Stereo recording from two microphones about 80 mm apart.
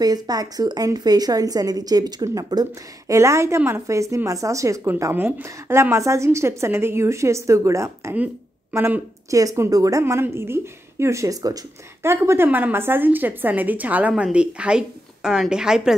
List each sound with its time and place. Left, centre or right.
0.0 s a woman's voice: right
5.1 s a woman's voice: right
8.7 s a woman's voice: right
9.3 s a woman's voice: right
12.0 s a woman's voice: right
12.4 s a woman's voice: centre